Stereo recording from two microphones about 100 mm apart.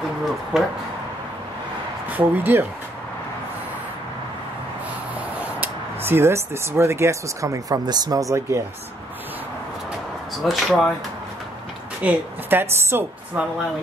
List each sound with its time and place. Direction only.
0.5 s speech: 5° right (ahead or behind)
2.0 s speech: 20° right (ahead or behind)
5.4 s speech: 20° right (ahead or behind)
10.4 s speech: centre (ahead or behind)
12.0 s a woman's voice: 15° right (ahead or behind)